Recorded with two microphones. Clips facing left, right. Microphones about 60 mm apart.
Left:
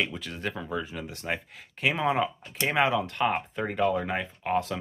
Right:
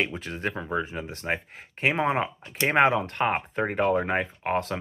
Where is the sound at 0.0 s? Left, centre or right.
Right.